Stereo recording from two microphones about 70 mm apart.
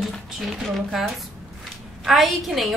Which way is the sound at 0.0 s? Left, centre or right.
Centre.